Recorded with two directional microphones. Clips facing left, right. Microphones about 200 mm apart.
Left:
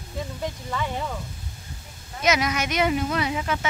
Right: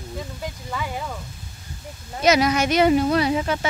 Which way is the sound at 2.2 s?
35° right (ahead or behind).